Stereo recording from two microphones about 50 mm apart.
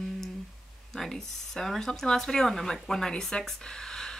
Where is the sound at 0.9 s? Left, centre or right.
Centre.